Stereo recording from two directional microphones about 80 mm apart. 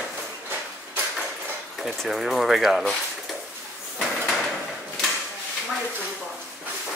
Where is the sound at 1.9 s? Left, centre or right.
Centre.